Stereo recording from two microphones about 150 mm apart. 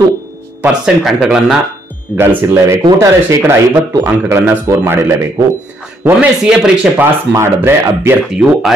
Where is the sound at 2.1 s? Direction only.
15° right (ahead or behind).